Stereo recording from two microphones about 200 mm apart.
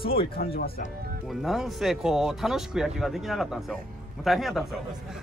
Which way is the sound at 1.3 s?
Centre (ahead or behind).